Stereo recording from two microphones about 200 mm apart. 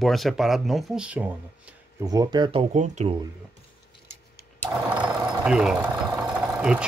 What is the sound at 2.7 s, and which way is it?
Speech, 35° right (ahead or behind).